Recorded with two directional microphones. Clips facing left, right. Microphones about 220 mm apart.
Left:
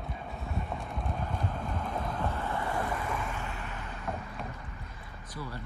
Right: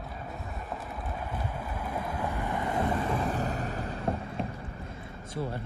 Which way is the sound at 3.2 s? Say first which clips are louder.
Right 7 dB; 40° right (ahead or behind).